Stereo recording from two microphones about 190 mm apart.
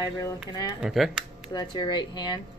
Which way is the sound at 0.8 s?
5° right (ahead or behind).